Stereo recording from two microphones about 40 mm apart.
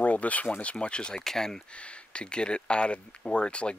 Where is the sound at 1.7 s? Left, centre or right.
Left.